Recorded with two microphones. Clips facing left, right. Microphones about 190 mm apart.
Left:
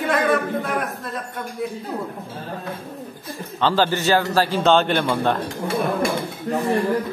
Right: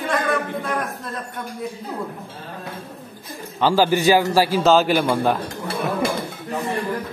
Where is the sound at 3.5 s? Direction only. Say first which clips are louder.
Right 2 dB; 10° right (ahead or behind).